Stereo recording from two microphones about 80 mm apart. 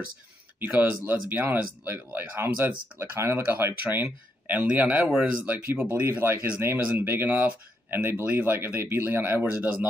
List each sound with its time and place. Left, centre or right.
0.6 s speech: right
5.5 s speech: right